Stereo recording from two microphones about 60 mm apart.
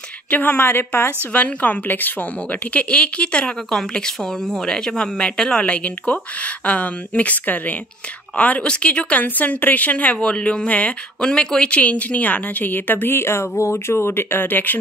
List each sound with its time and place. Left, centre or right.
0.3 s a woman's voice: left
0.6 s a woman's voice: left
1.3 s a woman's voice: left